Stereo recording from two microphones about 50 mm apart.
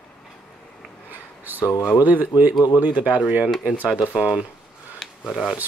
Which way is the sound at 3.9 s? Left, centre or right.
Centre.